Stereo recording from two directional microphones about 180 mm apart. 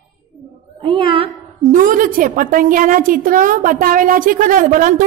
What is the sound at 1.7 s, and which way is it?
A woman's voice, 45° right (ahead or behind).